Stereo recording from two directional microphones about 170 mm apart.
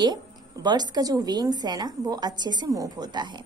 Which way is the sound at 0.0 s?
25° right (ahead or behind).